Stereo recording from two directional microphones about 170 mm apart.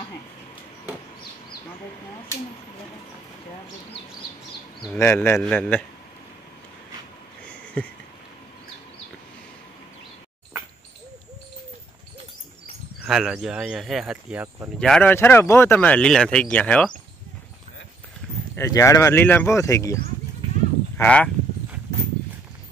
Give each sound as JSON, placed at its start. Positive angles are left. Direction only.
{"t": 4.9, "sound": "speech", "side_deg": 15}
{"t": 7.4, "sound": "a sound", "side_deg": 5}
{"t": 13.0, "sound": "speech", "side_deg": 0}
{"t": 14.8, "sound": "speech", "side_deg": 5}
{"t": 18.5, "sound": "speech", "side_deg": 15}
{"t": 21.0, "sound": "speech", "side_deg": 10}